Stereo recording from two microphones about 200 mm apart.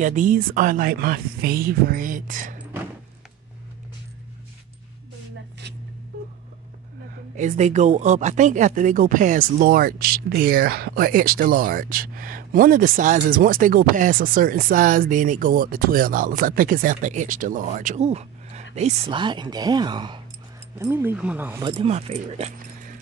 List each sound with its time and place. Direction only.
0.0 s speech: 40° right (ahead or behind)
7.3 s speech: 35° right (ahead or behind); by 21.5 s 10° right (ahead or behind)
21.5 s speech: 25° right (ahead or behind)